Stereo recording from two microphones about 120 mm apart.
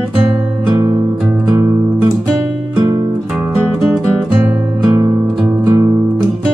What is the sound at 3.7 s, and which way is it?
Music, centre (ahead or behind).